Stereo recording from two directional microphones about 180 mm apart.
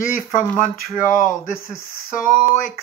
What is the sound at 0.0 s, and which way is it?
Speech, 50° left (ahead or behind).